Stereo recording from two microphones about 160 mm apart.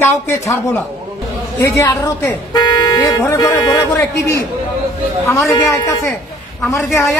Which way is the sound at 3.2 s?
15° left (ahead or behind).